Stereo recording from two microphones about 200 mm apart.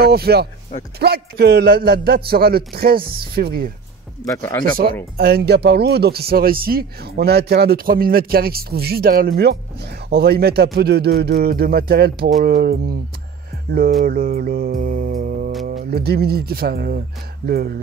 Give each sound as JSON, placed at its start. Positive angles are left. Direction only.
{"t": 0.0, "sound": "speech", "side_deg": -50}
{"t": 4.3, "sound": "speech", "side_deg": 15}
{"t": 4.6, "sound": "speech", "side_deg": -45}
{"t": 14.0, "sound": "music", "side_deg": -50}
{"t": 15.6, "sound": "speech", "side_deg": -50}